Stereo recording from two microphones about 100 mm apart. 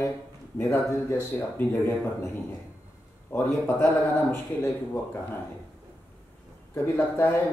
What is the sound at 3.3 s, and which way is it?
Speech, 20° left (ahead or behind).